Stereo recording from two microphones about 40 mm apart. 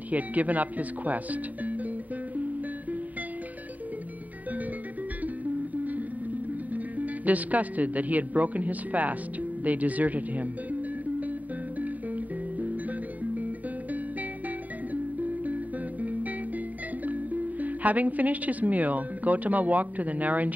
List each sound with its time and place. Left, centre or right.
0.1 s speech: right
2.3 s music: right
6.7 s speech: right
14.9 s music: right
17.0 s speech: right